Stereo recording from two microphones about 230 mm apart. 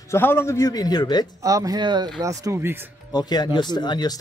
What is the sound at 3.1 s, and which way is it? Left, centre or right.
Speech, centre.